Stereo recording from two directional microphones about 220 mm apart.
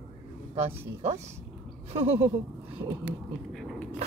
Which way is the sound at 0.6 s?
30° right (ahead or behind).